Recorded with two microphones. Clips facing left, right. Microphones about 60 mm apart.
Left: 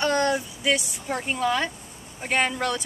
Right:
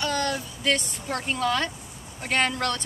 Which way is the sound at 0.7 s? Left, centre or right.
Centre.